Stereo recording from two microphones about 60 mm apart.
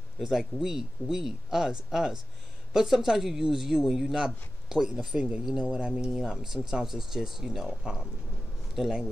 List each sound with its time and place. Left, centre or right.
0.3 s a man's voice: centre